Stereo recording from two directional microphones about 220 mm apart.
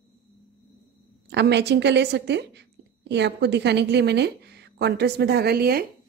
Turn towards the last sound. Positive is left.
turn(degrees=-45)  # may be behind; listen again after turning